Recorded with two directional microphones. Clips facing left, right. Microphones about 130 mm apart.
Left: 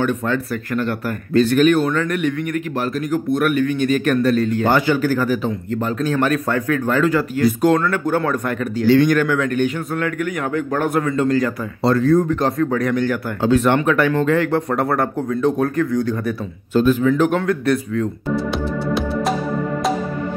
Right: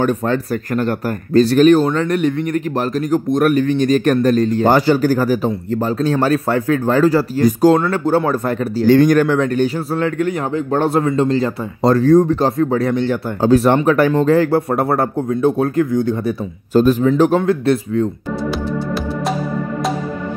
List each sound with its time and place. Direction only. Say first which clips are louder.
0.0 s speech: right 3 dB; 40° right (ahead or behind)
11.8 s speech: right 4 dB; 40° right (ahead or behind)
13.4 s speech: right 3 dB; 35° right (ahead or behind)
16.7 s speech: right 3 dB; 40° right (ahead or behind)
17.1 s speech: right 3 dB; 30° right (ahead or behind)
18.5 s music: even; centre (ahead or behind)